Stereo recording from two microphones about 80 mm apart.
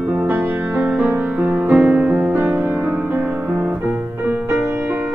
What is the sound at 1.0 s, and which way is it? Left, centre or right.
Music, centre.